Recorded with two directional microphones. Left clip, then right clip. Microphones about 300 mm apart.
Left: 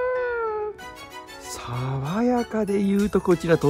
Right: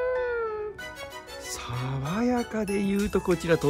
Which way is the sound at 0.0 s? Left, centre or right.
Centre.